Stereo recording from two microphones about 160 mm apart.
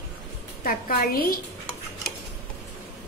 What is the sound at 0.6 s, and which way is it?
Cutlery, 65° left (ahead or behind).